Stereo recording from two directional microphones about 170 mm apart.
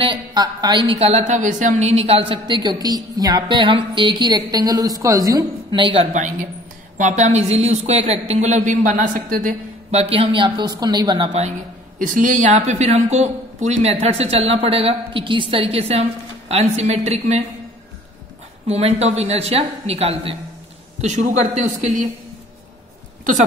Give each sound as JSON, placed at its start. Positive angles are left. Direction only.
{"t": 0.0, "sound": "a woman's voice", "side_deg": -25}
{"t": 7.0, "sound": "speech", "side_deg": -45}
{"t": 12.0, "sound": "speech", "side_deg": -50}
{"t": 18.7, "sound": "speech", "side_deg": -40}